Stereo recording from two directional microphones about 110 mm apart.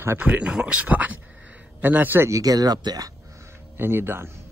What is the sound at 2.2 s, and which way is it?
Speech, 30° right (ahead or behind).